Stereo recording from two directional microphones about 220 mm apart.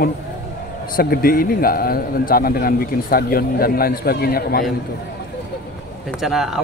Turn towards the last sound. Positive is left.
turn(degrees=0)  # may be behind; listen again after turning